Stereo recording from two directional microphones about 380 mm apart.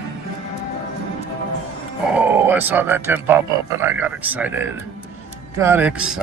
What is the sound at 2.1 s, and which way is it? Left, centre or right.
A man's voice, centre.